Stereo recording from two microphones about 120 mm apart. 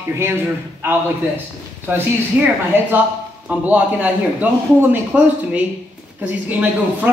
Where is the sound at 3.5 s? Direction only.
10° right (ahead or behind).